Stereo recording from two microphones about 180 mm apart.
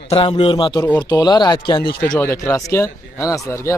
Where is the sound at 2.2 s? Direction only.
15° left (ahead or behind).